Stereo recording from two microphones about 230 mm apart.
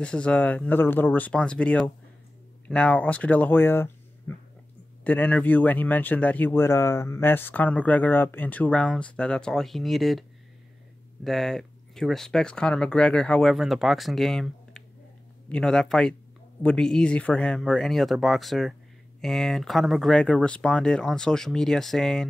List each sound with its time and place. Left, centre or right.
0.0 s speech: centre
11.2 s speech: centre